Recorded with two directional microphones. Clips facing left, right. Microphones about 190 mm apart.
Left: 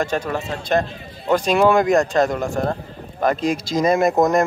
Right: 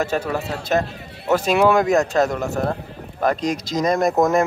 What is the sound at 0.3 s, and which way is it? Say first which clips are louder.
A man's voice: even; 5° right (ahead or behind).